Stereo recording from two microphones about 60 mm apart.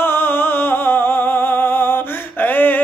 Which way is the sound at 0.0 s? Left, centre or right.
Left.